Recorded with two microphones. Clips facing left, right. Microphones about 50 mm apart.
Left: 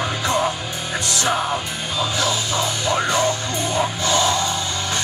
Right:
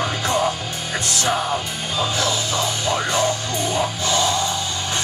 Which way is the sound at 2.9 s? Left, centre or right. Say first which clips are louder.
Left 2 dB; left.